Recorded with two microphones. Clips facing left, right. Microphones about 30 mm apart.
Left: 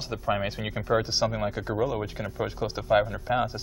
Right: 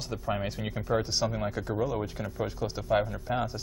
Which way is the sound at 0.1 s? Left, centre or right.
Left.